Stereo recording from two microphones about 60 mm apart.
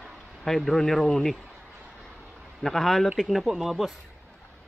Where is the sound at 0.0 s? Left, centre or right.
Centre.